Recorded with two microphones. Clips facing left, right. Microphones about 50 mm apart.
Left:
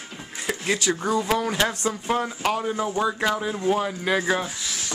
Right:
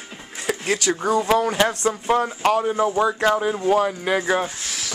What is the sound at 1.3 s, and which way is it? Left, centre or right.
Speech, right.